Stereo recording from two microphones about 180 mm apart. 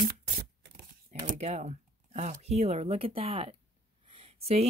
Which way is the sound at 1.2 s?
40° right (ahead or behind).